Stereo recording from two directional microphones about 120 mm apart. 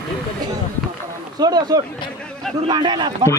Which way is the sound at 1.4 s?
35° right (ahead or behind).